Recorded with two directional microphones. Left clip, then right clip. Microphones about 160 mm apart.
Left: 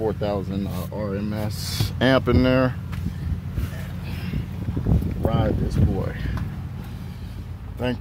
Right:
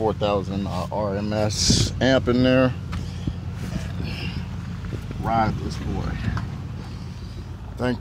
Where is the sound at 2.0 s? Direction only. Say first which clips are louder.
Left 3 dB; 20° left (ahead or behind).